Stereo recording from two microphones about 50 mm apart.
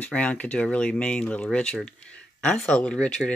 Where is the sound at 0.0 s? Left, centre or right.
Left.